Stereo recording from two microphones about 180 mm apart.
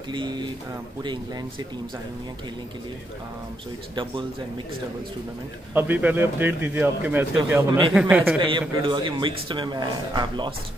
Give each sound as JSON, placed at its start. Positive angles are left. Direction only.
{"t": 0.1, "sound": "a man's voice", "side_deg": -25}
{"t": 5.8, "sound": "a man's voice", "side_deg": -10}
{"t": 8.4, "sound": "a man's voice", "side_deg": -25}